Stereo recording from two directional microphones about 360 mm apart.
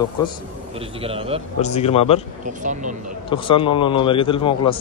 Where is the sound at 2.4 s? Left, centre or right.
Right.